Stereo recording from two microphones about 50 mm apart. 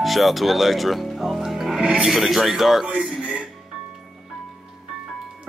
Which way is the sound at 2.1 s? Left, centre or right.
Centre.